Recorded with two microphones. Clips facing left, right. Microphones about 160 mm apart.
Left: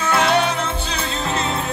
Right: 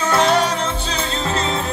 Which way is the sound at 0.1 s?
35° right (ahead or behind).